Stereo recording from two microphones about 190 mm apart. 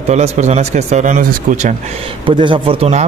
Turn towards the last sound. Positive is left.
turn(degrees=-35)  # may be behind; listen again after turning